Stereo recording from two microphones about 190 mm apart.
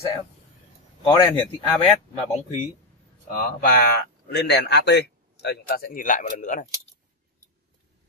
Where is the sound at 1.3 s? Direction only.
10° left (ahead or behind).